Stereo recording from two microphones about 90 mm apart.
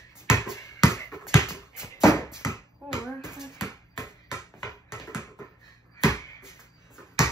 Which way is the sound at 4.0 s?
30° left (ahead or behind).